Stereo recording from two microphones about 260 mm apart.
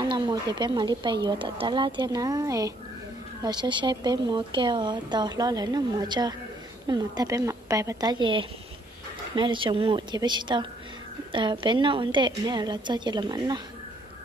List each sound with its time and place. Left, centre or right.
0.1 s speech: centre